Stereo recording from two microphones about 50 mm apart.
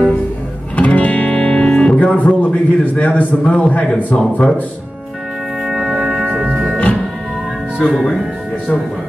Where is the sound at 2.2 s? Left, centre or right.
Left.